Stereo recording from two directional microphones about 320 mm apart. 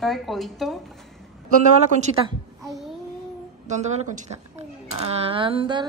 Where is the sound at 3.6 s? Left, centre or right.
Right.